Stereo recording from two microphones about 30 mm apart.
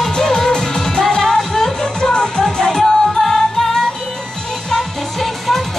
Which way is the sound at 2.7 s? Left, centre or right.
Centre.